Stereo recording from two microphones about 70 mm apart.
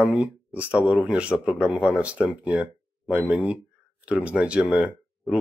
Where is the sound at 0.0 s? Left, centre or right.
Centre.